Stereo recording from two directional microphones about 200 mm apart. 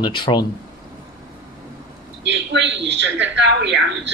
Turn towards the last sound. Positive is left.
turn(degrees=-60)  # may be behind; listen again after turning